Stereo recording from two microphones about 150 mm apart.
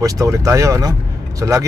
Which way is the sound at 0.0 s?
25° right (ahead or behind).